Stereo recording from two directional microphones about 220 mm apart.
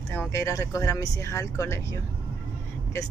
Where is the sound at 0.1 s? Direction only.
10° left (ahead or behind).